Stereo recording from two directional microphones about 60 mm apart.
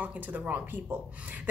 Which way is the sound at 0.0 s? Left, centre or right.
Right.